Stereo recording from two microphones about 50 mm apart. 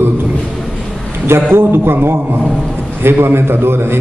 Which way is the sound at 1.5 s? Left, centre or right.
Right.